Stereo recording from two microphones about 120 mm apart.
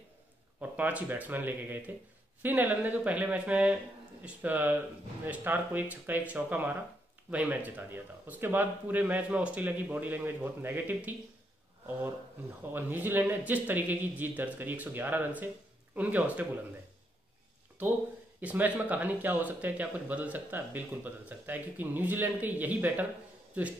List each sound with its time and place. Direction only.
0.6 s speech: 15° right (ahead or behind)
12.7 s speech: 15° right (ahead or behind)
18.4 s speech: 10° right (ahead or behind)